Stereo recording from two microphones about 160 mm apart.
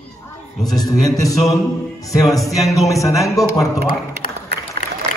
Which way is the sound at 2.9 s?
20° left (ahead or behind).